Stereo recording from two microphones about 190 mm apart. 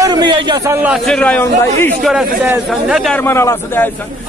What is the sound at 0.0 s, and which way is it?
Speech, 25° right (ahead or behind).